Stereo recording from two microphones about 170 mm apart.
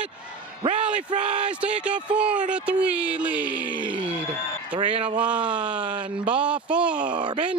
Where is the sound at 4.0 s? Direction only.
5° right (ahead or behind).